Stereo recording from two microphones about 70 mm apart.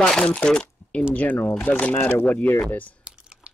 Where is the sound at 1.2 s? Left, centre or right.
Left.